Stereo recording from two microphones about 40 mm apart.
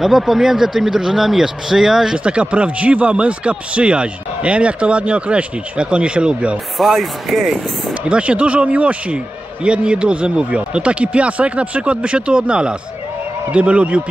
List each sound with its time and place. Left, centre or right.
0.0 s speech: centre
2.1 s a man's voice: right
6.8 s speech: centre
8.0 s a man's voice: right